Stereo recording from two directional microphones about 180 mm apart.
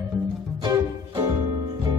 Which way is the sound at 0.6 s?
25° right (ahead or behind).